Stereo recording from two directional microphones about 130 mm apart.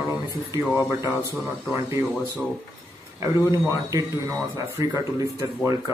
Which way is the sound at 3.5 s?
30° right (ahead or behind).